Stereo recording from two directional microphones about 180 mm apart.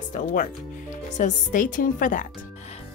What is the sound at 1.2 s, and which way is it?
Speech, 45° left (ahead or behind).